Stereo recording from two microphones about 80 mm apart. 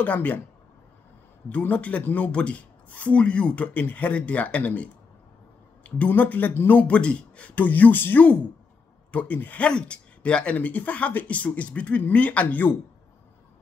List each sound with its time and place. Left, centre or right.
0.0 s speech: left
1.5 s speech: centre
5.9 s speech: centre